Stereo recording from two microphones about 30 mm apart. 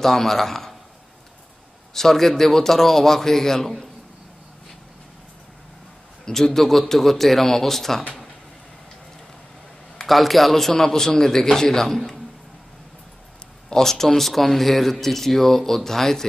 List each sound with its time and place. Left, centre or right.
0.0 s a man's voice: centre
2.0 s speech: centre
6.2 s speech: centre
10.0 s a man's voice: centre
10.7 s speech: centre
13.7 s speech: centre